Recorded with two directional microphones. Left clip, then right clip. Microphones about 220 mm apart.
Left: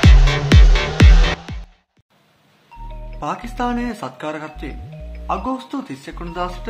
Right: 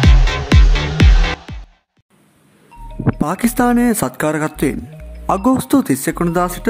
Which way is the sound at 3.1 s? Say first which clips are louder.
Right 5 dB; 45° right (ahead or behind).